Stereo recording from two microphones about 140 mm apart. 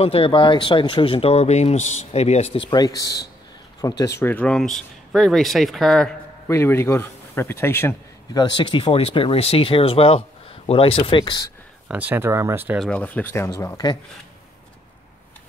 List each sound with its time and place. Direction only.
0.0 s speech: 45° left (ahead or behind)
2.7 s speech: 25° left (ahead or behind); by 6.1 s 5° left (ahead or behind)
6.4 s speech: 20° left (ahead or behind)
8.3 s speech: 30° left (ahead or behind)
11.9 s speech: 10° right (ahead or behind)
12.7 s speech: 5° left (ahead or behind); by 13.9 s 25° left (ahead or behind)